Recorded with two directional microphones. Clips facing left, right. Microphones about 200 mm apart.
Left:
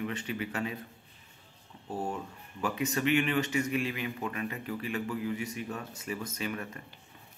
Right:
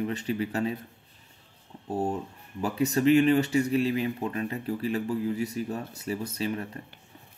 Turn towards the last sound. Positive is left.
turn(degrees=-30)  # may be behind; listen again after turning